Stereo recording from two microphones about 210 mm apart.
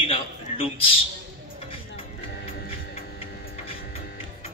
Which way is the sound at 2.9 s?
30° left (ahead or behind).